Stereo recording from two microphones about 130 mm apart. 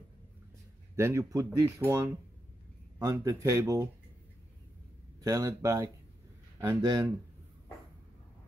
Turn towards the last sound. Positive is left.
turn(degrees=-30)  # may be behind; listen again after turning